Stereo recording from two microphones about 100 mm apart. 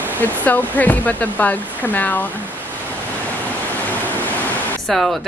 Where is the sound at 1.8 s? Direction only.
20° left (ahead or behind).